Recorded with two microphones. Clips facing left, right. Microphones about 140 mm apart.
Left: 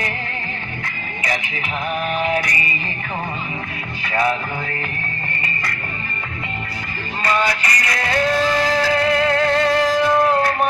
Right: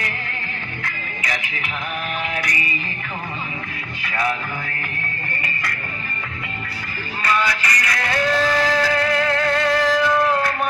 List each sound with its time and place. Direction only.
1.2 s music: 35° left (ahead or behind)
4.0 s music: 35° left (ahead or behind)
7.2 s music: 35° left (ahead or behind)